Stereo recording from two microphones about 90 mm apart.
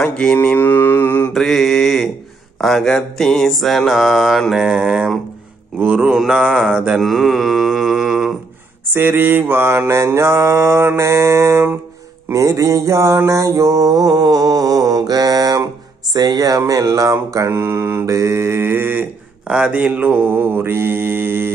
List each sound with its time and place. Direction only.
0.0 s mantra: 10° left (ahead or behind)
1.3 s mantra: centre (ahead or behind)
8.8 s mantra: 25° right (ahead or behind)